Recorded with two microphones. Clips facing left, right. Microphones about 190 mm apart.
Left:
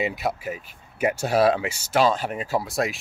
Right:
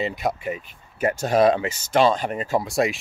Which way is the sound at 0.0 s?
5° left (ahead or behind).